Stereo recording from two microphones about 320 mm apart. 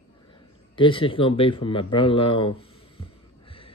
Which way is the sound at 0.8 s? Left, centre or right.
Centre.